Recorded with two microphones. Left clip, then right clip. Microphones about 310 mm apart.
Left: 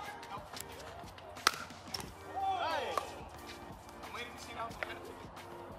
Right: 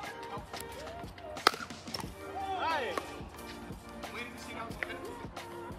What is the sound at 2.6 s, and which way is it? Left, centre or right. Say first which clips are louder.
Chop: right 3 dB; right.